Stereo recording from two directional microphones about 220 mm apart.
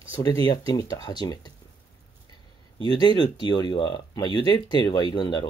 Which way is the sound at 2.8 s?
20° left (ahead or behind).